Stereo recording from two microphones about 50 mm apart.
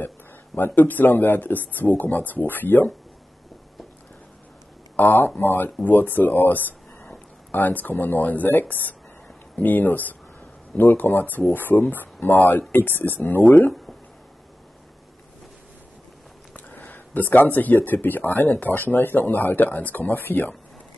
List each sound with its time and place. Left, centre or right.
0.6 s speech: left
4.9 s speech: left
13.7 s a sound: centre
16.5 s speech: left